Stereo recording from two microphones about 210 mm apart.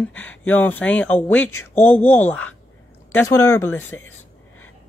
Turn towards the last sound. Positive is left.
turn(degrees=10)  # may be behind; listen again after turning